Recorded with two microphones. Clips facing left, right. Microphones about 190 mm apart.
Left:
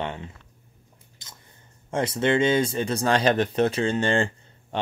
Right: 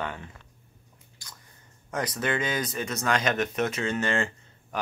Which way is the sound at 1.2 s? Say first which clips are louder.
Even; 20° left (ahead or behind).